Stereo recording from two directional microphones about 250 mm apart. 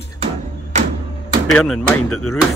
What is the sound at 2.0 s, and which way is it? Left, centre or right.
Speech, left.